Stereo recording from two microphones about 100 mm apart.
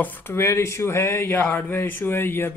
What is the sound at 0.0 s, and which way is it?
Speech, 20° left (ahead or behind).